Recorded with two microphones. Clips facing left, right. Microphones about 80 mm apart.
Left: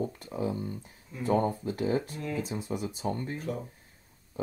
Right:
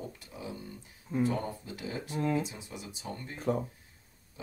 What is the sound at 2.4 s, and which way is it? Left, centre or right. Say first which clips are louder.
Speech: left 5 dB; left.